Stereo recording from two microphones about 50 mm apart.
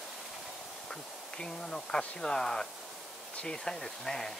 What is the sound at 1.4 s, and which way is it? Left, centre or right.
Speech, centre.